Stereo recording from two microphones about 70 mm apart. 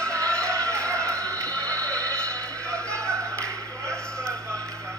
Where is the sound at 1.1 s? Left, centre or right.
Right.